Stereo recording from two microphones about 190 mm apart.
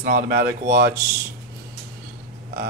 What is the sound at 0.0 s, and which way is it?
Speech, 50° right (ahead or behind).